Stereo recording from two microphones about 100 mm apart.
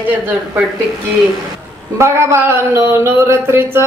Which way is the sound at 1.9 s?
25° right (ahead or behind).